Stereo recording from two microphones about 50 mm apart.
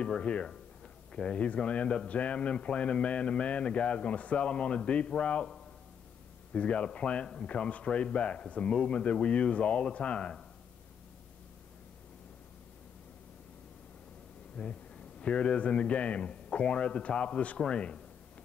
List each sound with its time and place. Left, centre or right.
0.0 s a man's voice: left
14.6 s a man's voice: centre